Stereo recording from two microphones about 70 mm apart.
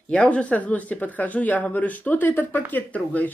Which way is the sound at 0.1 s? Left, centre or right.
Centre.